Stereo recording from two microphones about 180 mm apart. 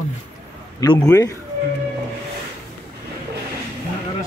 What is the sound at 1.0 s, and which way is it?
Speech, 15° left (ahead or behind).